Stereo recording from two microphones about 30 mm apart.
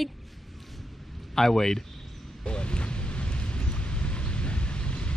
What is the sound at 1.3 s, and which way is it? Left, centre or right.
Speech, centre.